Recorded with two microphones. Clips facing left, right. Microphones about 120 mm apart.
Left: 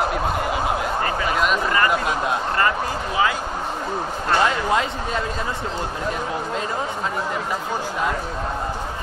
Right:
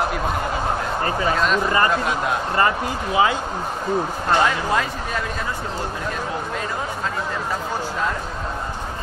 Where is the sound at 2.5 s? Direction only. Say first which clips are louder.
Right 1 dB; 25° right (ahead or behind).